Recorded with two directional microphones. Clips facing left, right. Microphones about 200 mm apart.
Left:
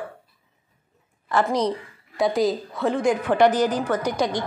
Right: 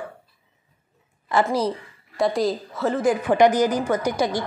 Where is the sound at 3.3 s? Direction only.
15° right (ahead or behind).